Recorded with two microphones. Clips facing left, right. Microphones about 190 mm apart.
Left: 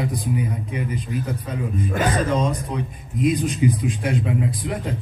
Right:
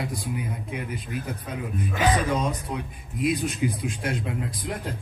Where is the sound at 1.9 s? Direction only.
50° left (ahead or behind).